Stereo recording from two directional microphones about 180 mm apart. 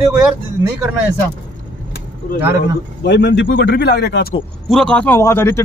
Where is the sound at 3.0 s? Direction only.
75° left (ahead or behind).